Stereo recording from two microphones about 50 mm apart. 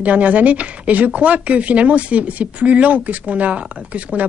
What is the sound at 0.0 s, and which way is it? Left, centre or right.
Speech, right.